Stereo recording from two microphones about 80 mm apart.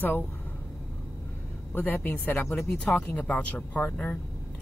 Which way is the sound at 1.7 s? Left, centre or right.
Left.